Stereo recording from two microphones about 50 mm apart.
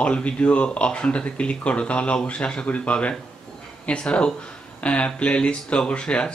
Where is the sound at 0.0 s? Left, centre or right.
Left.